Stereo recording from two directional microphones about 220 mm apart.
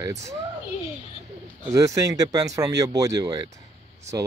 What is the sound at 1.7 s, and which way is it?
Speech, 15° right (ahead or behind).